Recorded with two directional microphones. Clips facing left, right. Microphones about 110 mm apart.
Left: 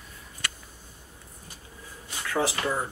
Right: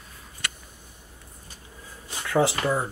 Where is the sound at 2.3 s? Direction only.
20° right (ahead or behind).